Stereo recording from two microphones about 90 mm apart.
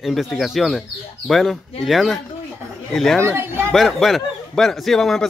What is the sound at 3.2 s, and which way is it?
Speech, 30° right (ahead or behind).